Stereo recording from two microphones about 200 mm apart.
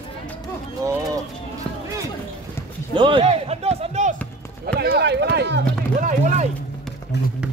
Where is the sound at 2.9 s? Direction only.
25° right (ahead or behind).